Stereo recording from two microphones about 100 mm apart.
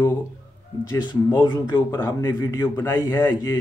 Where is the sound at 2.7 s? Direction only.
25° left (ahead or behind).